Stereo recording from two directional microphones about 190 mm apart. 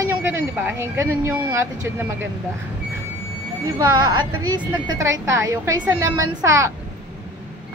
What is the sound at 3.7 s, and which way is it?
Speech, 20° right (ahead or behind).